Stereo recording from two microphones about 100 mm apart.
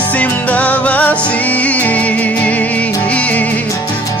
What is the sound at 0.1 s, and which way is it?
Music, 15° left (ahead or behind).